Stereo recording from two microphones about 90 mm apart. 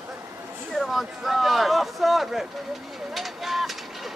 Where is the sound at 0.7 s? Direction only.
Centre (ahead or behind).